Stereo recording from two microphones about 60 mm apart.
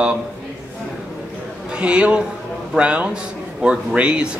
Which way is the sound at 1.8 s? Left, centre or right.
Centre.